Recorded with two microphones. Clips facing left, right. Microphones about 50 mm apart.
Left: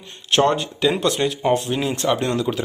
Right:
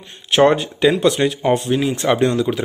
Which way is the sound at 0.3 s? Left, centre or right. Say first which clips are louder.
Right 4 dB; centre.